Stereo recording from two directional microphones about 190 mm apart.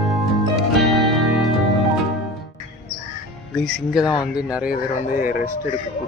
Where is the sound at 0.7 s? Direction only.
Centre (ahead or behind).